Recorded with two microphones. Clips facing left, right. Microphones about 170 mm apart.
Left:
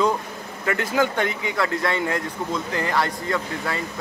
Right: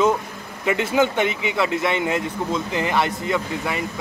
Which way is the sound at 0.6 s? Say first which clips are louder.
Right 3 dB; 20° right (ahead or behind).